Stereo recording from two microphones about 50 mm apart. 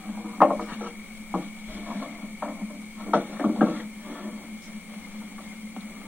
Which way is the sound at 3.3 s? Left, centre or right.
Right.